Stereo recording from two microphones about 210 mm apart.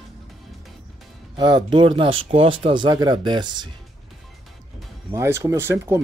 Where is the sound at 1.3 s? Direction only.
20° right (ahead or behind).